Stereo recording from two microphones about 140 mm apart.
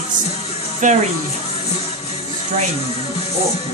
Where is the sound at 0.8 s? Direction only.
60° right (ahead or behind).